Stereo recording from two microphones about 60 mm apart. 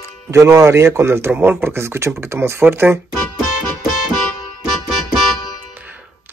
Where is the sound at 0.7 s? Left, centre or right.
Right.